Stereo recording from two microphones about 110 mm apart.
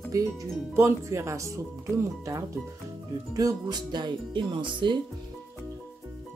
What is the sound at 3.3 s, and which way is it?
Speech, 35° right (ahead or behind).